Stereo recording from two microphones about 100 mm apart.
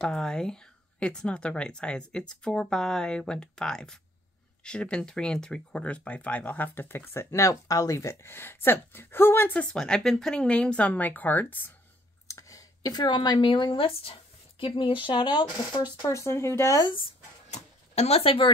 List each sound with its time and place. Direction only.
0.0 s speech: 5° left (ahead or behind)
12.3 s speech: 35° left (ahead or behind)
16.0 s speech: 30° left (ahead or behind)
17.5 s a sound: 90° left; by 18.5 s 65° left (ahead or behind)